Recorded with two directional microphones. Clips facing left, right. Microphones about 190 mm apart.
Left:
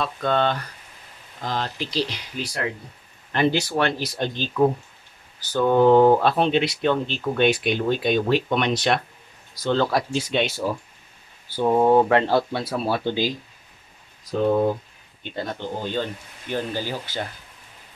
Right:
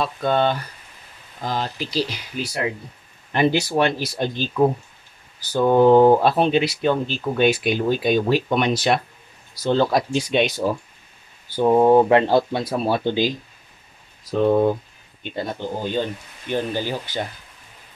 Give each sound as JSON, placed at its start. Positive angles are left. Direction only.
{"t": 0.0, "sound": "speech", "side_deg": -10}
{"t": 9.6, "sound": "speech", "side_deg": -15}
{"t": 15.2, "sound": "speech", "side_deg": -15}